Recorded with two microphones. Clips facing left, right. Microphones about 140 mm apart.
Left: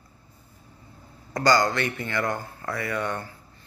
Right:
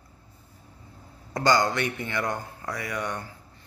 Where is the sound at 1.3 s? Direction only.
20° right (ahead or behind).